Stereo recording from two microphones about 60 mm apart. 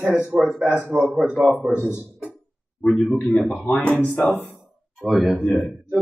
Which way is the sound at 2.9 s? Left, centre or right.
Centre.